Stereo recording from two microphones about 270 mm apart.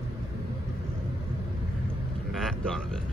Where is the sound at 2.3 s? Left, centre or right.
Centre.